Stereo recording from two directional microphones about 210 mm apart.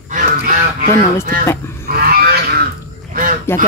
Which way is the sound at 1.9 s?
45° right (ahead or behind).